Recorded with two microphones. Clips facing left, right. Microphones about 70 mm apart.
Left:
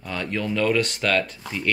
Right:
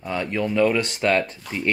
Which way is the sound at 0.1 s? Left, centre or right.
Right.